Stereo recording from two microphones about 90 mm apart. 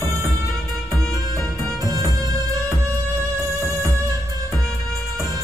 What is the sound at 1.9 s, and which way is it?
Music, 40° right (ahead or behind).